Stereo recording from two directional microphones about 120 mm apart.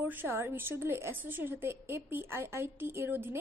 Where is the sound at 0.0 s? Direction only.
15° right (ahead or behind).